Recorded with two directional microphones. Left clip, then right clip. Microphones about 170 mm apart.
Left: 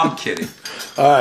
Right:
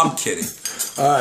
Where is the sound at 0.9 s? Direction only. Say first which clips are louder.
Left 4 dB; 5° left (ahead or behind).